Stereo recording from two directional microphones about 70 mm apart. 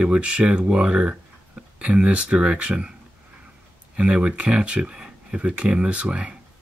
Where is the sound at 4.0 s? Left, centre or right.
Centre.